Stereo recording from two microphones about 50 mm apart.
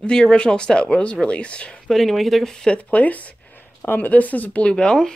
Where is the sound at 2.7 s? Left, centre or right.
Left.